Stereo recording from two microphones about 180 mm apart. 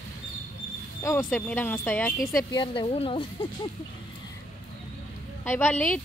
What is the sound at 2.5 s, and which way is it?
Speech, 30° left (ahead or behind).